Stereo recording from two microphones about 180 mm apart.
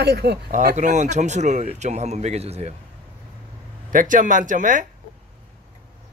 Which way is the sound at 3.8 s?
45° right (ahead or behind).